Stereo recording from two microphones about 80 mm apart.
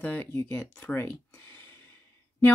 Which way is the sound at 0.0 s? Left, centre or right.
Left.